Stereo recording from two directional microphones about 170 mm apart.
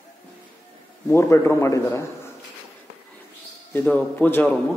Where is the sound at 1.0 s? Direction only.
15° left (ahead or behind).